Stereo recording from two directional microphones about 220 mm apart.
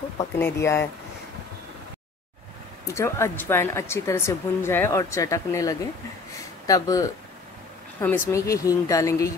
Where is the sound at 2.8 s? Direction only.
10° left (ahead or behind).